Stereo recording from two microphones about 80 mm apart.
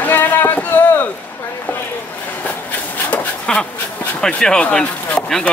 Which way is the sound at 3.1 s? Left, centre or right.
Centre.